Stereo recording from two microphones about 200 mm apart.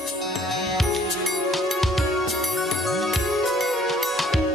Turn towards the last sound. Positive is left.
turn(degrees=0)  # may be behind; listen again after turning